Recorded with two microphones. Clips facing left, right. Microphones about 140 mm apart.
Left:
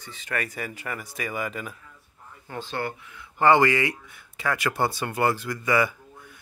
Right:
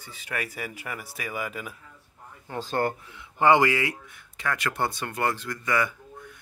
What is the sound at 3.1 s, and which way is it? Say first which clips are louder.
Speech: left 2 dB; 20° right (ahead or behind).